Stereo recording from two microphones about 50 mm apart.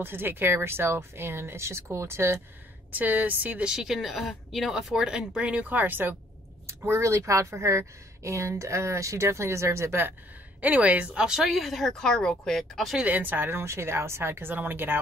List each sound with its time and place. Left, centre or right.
0.0 s speech: right
2.9 s speech: right
3.6 s speech: centre
5.5 s a woman's voice: right
5.8 s speech: right
6.9 s speech: right
10.6 s a woman's voice: right
11.2 s speech: centre
11.5 s speech: centre
11.9 s speech: centre
13.0 s speech: right